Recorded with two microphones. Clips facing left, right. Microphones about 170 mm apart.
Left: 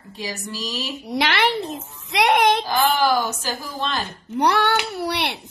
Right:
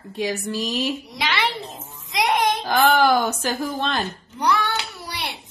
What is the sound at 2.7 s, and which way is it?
A woman's voice, 60° right (ahead or behind).